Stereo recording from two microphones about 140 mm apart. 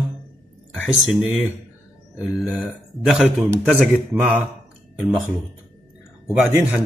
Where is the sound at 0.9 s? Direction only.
5° right (ahead or behind).